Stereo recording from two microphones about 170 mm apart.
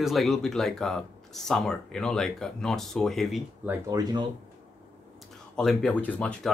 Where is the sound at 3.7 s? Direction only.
20° right (ahead or behind).